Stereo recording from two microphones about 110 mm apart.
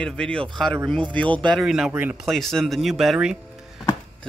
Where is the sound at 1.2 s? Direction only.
50° right (ahead or behind).